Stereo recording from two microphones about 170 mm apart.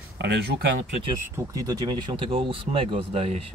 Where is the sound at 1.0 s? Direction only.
20° right (ahead or behind).